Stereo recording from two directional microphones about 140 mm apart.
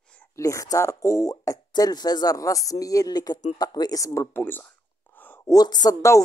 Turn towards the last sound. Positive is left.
turn(degrees=25)  # may be behind; listen again after turning